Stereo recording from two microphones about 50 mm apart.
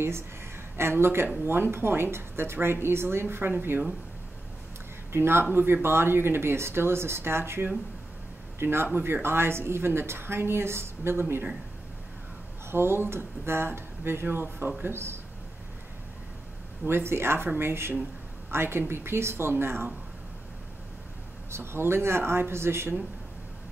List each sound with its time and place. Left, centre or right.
0.7 s speech: right
5.1 s speech: right
12.7 s speech: right
16.8 s speech: right
21.5 s speech: right